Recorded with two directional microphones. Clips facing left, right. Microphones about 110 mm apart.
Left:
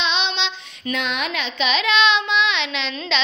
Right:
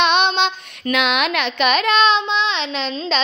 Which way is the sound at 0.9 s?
75° right (ahead or behind).